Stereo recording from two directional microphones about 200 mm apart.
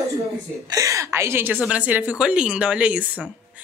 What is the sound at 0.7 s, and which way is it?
A woman's voice, 15° right (ahead or behind).